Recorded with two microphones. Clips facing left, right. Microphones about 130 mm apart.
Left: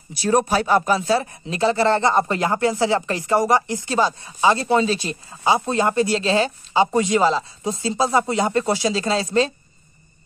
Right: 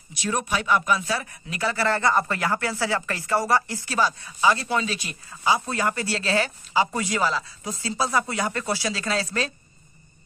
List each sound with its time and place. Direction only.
0.1 s speech: 35° left (ahead or behind)